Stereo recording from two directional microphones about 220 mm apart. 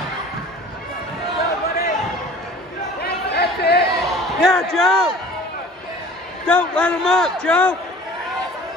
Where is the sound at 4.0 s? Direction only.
Centre (ahead or behind).